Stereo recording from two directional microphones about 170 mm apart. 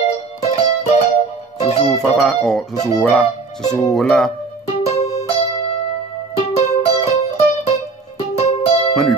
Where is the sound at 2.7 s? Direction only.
20° left (ahead or behind).